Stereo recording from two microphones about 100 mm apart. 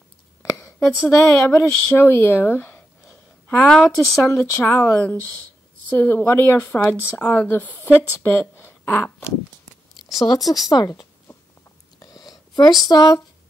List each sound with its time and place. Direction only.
0.4 s speech: 25° left (ahead or behind)
3.6 s speech: 5° left (ahead or behind)
4.3 s speech: 30° left (ahead or behind)
10.1 s a woman's voice: 40° left (ahead or behind)
12.0 s whispering: 40° left (ahead or behind)
12.8 s a woman's voice: 40° left (ahead or behind)